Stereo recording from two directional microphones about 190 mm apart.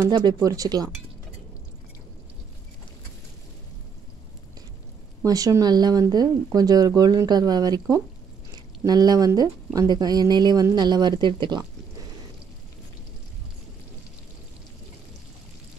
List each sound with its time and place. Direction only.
0.0 s speech: 20° right (ahead or behind)
5.2 s speech: 20° right (ahead or behind)